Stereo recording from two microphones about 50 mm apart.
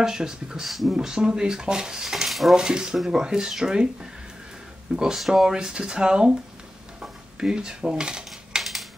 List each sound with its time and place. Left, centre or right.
0.0 s speech: centre
0.7 s speech: centre
0.9 s speech: centre
2.5 s speech: centre
7.0 s dishes: centre